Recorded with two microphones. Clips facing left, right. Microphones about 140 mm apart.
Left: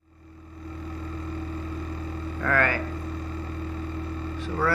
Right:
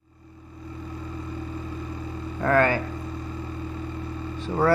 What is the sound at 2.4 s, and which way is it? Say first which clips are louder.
Mains hum: right 5 dB; 25° right (ahead or behind).